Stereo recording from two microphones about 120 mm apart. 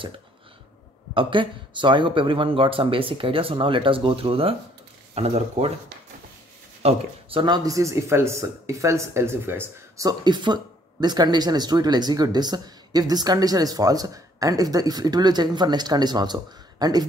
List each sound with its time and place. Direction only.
1.1 s speech: 45° right (ahead or behind); by 5.7 s 60° right (ahead or behind)
6.8 s speech: 55° right (ahead or behind); by 10.0 s 20° right (ahead or behind)
10.0 s speech: 40° right (ahead or behind)